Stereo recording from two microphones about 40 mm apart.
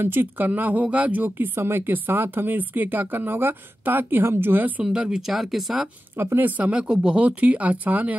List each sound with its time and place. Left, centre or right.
0.0 s speech: right
0.5 s speech: right
1.6 s speech: right
4.2 s speech: right
4.6 s speech: right
4.8 s speech: right
5.3 s speech: centre
6.1 s speech: right
6.6 s speech: right
7.2 s speech: right